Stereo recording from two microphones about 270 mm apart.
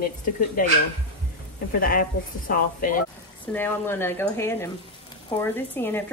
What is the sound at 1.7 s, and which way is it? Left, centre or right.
A woman's voice, left.